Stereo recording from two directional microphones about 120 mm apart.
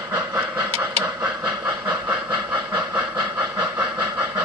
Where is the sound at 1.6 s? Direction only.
35° right (ahead or behind).